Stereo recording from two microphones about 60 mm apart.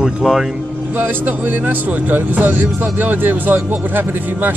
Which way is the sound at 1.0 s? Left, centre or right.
Right.